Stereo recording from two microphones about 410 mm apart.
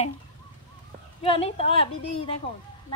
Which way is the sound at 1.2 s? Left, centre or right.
Centre.